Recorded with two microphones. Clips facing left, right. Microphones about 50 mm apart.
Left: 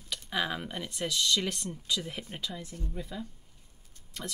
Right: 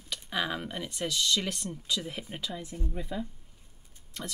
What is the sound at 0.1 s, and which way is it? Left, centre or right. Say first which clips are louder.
Speech: even; centre.